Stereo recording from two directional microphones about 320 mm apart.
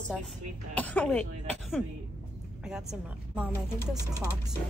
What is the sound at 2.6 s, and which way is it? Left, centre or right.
Speech, centre.